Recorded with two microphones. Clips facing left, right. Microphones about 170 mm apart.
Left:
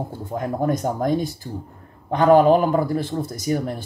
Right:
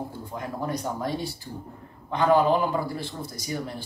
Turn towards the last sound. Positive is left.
turn(degrees=50)  # may be behind; listen again after turning